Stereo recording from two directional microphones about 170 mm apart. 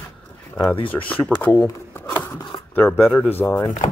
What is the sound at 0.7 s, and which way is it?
Speech, 30° left (ahead or behind).